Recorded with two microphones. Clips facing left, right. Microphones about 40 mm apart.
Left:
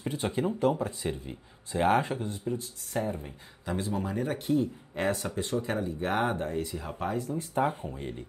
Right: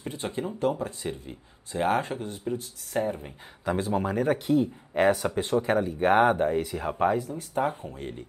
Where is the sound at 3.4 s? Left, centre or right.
Right.